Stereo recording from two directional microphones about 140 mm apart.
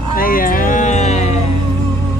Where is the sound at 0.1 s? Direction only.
90° left; by 1.4 s 55° left (ahead or behind).